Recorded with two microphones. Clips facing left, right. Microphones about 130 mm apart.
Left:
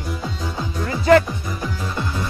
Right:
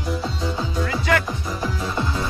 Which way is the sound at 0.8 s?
30° left (ahead or behind).